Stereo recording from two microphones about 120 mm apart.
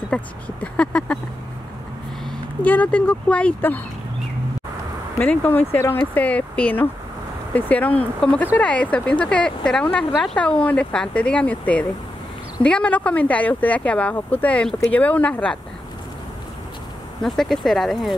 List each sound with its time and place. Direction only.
0.1 s speech: 10° left (ahead or behind)
2.6 s speech: 10° left (ahead or behind)
5.2 s speech: 15° left (ahead or behind)
17.2 s speech: centre (ahead or behind)